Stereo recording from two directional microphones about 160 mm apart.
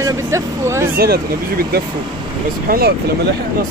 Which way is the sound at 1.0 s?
75° right (ahead or behind).